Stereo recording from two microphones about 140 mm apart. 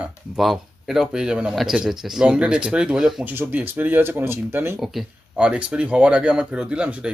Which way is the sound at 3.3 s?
15° right (ahead or behind).